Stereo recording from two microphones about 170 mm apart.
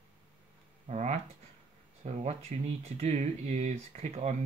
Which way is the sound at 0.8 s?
45° right (ahead or behind).